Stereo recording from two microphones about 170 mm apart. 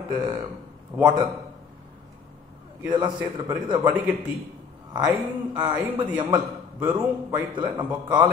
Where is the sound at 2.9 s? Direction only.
30° right (ahead or behind).